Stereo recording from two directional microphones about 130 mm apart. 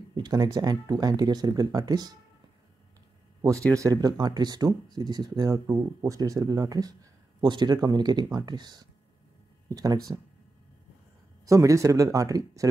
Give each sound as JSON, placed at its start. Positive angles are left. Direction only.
{"t": 0.1, "sound": "speech", "side_deg": -30}
{"t": 3.7, "sound": "speech", "side_deg": -25}
{"t": 11.4, "sound": "speech", "side_deg": -25}